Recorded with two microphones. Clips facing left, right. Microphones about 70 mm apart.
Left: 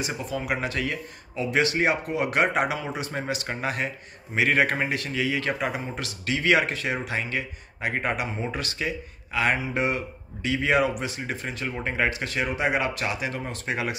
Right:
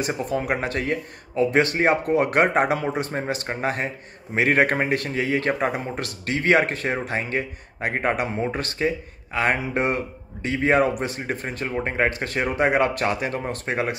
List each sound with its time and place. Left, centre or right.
0.0 s speech: right